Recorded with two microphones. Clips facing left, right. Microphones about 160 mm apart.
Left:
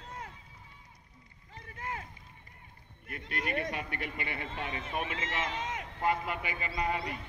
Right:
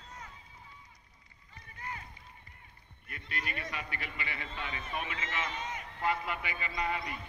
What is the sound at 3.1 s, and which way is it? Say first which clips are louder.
A man's voice: left 5 dB; 55° left (ahead or behind).